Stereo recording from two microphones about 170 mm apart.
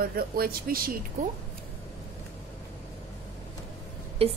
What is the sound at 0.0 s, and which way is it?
Speech, 60° right (ahead or behind).